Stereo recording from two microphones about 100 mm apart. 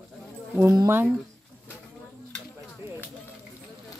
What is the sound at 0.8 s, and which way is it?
Speech, 20° right (ahead or behind).